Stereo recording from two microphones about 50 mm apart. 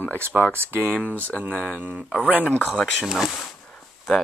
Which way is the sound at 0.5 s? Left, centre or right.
Right.